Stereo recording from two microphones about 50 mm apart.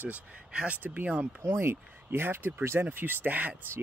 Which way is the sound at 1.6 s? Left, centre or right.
Right.